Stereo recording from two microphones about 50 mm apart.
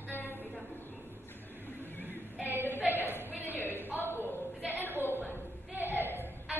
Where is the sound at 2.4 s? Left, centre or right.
Right.